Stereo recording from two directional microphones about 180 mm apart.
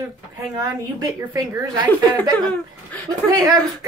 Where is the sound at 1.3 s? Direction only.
15° right (ahead or behind).